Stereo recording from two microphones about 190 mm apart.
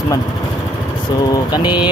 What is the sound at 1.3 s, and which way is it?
Speech, 25° left (ahead or behind).